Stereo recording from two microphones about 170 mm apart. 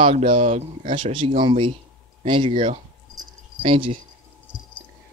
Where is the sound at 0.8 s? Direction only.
30° right (ahead or behind).